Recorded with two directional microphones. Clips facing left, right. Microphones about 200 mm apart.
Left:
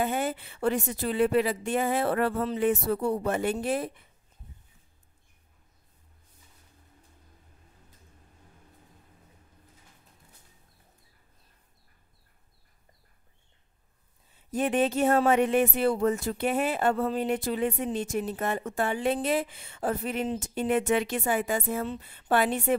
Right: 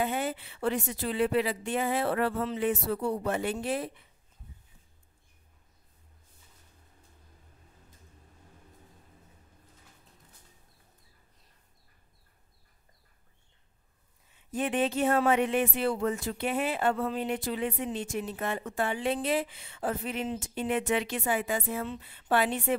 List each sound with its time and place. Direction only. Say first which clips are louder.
0.0 s speech: left 2 dB; 45° left (ahead or behind)
14.5 s speech: left 3 dB; 40° left (ahead or behind)